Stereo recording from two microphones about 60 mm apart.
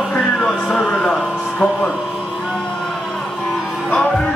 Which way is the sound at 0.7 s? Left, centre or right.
Centre.